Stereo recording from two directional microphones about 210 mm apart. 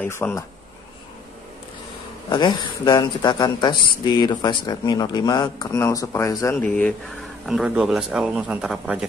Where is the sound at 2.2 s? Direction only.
20° left (ahead or behind).